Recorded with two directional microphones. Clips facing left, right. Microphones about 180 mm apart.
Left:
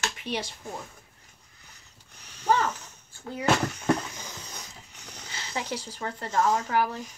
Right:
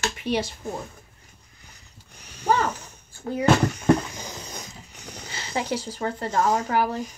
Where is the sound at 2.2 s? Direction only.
10° right (ahead or behind).